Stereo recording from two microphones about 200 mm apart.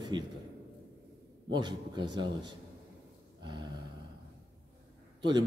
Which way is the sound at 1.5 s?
20° right (ahead or behind).